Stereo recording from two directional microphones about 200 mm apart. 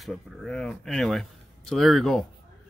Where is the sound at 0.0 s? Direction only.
Centre (ahead or behind).